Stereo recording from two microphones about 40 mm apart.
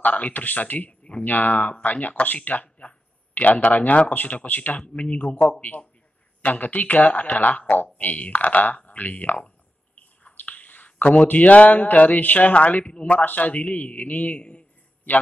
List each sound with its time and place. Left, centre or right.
0.1 s speech: left
2.4 s a sound: left
3.4 s speech: left
14.4 s a man's voice: left